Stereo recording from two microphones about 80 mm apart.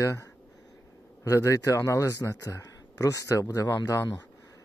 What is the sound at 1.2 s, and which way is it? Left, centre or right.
A man's voice, left.